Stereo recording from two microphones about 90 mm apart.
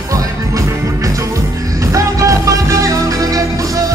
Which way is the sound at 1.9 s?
35° right (ahead or behind).